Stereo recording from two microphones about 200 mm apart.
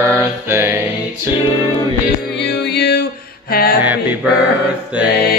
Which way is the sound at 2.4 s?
55° left (ahead or behind).